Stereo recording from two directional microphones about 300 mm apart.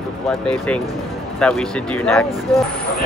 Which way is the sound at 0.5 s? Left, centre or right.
Centre.